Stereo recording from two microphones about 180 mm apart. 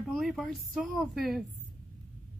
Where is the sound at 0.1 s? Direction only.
Centre (ahead or behind).